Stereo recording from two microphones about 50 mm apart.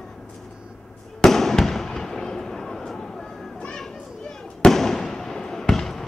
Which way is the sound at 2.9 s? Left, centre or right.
Centre.